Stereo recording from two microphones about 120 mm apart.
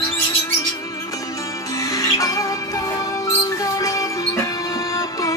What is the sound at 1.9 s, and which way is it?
Music, 30° left (ahead or behind).